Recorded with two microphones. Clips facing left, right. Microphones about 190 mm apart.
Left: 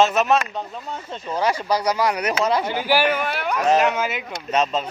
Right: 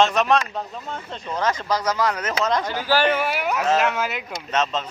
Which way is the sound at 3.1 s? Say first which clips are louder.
Right 1 dB; 5° right (ahead or behind).